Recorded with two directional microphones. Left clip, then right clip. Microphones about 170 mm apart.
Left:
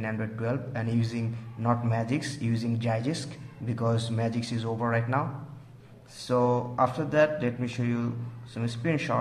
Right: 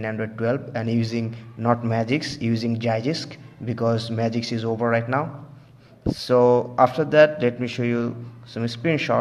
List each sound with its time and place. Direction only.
0.0 s a man's voice: 30° right (ahead or behind)